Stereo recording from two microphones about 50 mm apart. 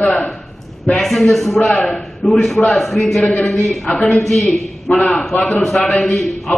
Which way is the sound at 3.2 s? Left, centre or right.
Centre.